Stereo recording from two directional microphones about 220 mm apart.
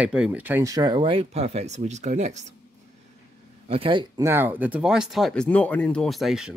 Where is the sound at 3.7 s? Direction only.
25° right (ahead or behind).